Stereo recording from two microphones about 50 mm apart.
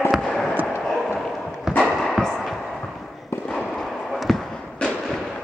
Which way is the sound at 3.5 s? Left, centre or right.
Centre.